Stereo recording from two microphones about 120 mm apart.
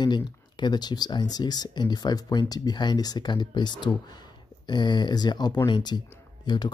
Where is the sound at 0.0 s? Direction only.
40° left (ahead or behind).